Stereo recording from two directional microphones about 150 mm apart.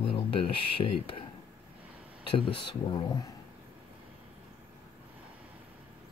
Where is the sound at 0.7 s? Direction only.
35° left (ahead or behind).